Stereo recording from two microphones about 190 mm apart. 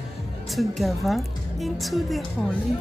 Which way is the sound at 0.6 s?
Centre (ahead or behind).